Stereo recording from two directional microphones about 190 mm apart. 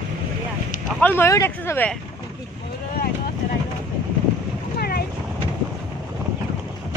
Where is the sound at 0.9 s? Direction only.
10° left (ahead or behind).